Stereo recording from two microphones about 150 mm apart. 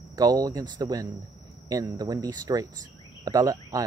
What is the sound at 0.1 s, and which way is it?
Speech, 25° right (ahead or behind).